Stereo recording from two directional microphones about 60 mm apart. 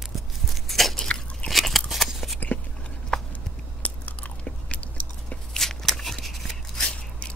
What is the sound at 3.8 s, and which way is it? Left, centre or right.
Biting, left.